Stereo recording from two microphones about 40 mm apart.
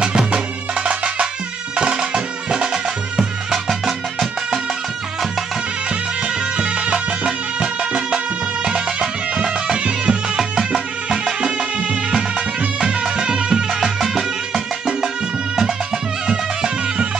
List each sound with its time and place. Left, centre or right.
0.8 s music: right
3.2 s music: centre
6.5 s music: right
13.8 s music: centre